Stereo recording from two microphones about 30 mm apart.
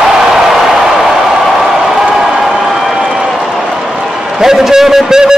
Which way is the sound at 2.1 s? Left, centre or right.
Right.